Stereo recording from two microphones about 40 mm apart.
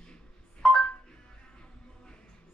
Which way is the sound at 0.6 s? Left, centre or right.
Centre.